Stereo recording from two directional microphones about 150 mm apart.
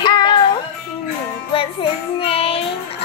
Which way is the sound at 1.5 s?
35° left (ahead or behind).